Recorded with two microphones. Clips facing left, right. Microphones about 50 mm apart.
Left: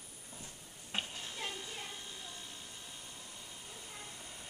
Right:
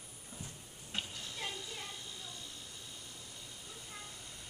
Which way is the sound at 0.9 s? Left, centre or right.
Left.